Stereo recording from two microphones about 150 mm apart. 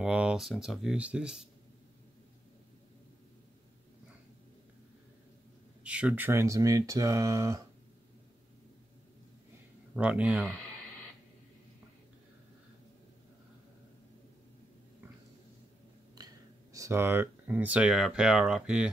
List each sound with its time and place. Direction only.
0.0 s speech: 5° right (ahead or behind)
5.9 s speech: 10° right (ahead or behind)
9.9 s speech: 10° right (ahead or behind)
10.4 s a sound: 10° left (ahead or behind)
16.2 s a sound: 25° right (ahead or behind)
16.7 s speech: 20° right (ahead or behind)